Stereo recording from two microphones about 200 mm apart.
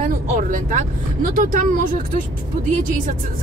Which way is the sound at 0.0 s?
40° right (ahead or behind).